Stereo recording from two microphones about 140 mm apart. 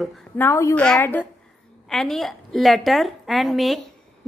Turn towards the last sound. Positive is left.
turn(degrees=0)  # may be behind; listen again after turning